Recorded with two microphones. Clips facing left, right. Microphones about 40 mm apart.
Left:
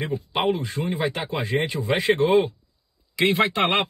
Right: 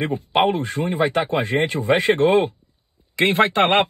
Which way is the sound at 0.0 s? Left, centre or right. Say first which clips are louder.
Right 5 dB; right.